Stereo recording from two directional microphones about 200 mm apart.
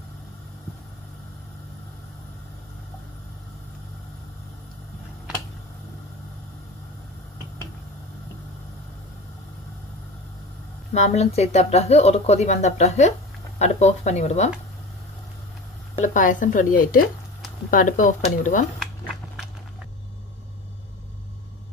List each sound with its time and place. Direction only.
10.9 s speech: 35° left (ahead or behind)
16.0 s speech: 40° left (ahead or behind)